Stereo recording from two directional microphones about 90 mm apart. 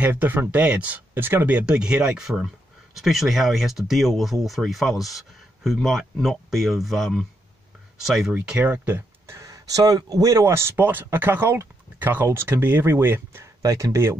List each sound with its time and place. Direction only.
0.0 s speech: 20° right (ahead or behind); by 8.4 s centre (ahead or behind)
8.5 s speech: 15° right (ahead or behind)
9.4 s speech: 40° right (ahead or behind)
13.6 s speech: 45° right (ahead or behind)